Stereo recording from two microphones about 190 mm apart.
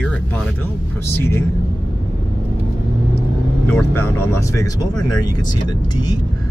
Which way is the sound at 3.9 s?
15° left (ahead or behind).